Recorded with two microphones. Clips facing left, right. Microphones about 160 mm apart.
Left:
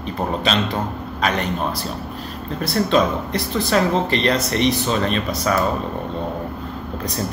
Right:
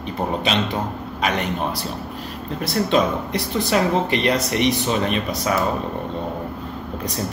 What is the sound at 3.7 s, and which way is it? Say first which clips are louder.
A man's voice: left 1 dB; 15° right (ahead or behind).